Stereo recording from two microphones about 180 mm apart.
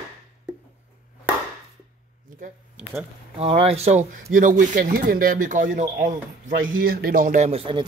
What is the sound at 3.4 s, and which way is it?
Speech, 35° right (ahead or behind).